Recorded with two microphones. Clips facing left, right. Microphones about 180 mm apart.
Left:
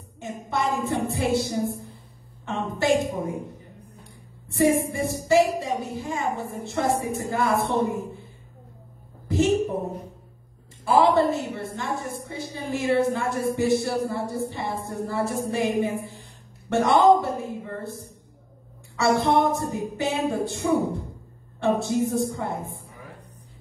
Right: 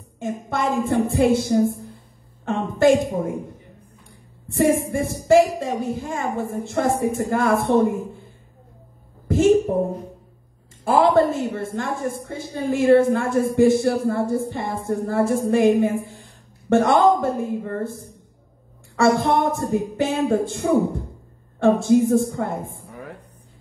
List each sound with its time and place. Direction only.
0.2 s a woman's voice: 55° right (ahead or behind)
4.6 s a woman's voice: 50° right (ahead or behind)
9.3 s a woman's voice: 50° right (ahead or behind)
10.8 s a woman's voice: 55° right (ahead or behind)